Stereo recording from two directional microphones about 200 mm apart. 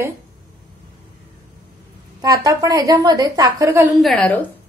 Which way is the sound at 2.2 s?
15° right (ahead or behind).